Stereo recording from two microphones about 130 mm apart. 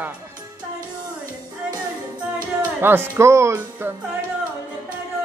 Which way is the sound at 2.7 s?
15° right (ahead or behind).